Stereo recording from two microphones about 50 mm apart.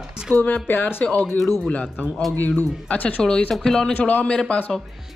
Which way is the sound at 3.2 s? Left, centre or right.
Centre.